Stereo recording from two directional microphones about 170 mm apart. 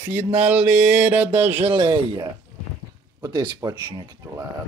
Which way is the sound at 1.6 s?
30° right (ahead or behind).